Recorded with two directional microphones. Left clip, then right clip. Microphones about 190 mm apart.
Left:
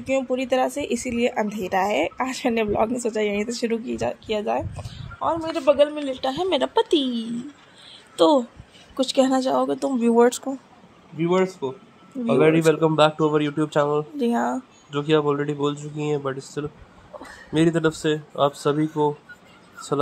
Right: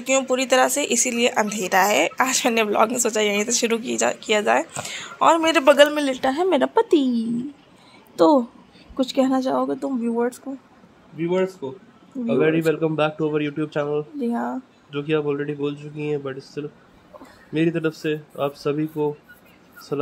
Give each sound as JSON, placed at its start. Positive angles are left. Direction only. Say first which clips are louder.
{"t": 0.0, "sound": "a man's voice", "louder": "right 3 dB", "side_deg": 10}
{"t": 10.0, "sound": "speech", "louder": "left 9 dB", "side_deg": 35}
{"t": 11.1, "sound": "speech", "louder": "left 1 dB", "side_deg": 15}